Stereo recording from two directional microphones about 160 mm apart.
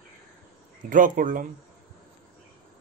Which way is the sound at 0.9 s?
55° right (ahead or behind).